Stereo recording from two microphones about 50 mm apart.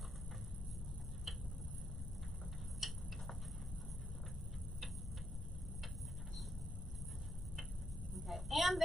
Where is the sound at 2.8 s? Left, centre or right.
Centre.